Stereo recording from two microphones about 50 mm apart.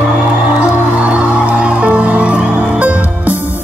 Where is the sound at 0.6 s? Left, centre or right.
Right.